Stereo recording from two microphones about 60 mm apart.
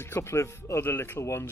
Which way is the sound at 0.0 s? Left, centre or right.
Left.